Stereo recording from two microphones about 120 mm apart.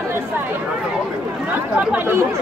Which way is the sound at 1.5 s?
15° right (ahead or behind).